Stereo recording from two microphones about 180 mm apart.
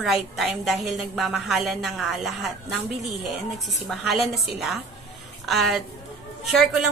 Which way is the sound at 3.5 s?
Centre (ahead or behind).